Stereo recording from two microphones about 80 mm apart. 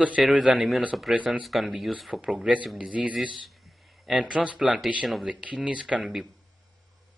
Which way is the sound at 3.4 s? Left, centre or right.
Centre.